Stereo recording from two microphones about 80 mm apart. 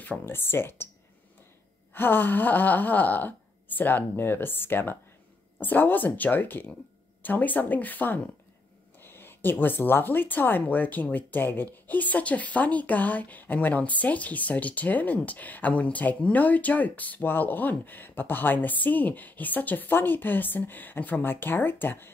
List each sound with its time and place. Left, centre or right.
0.2 s speech: left
2.0 s speech: left